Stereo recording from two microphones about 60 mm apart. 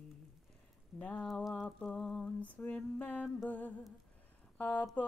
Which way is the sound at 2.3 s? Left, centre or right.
Left.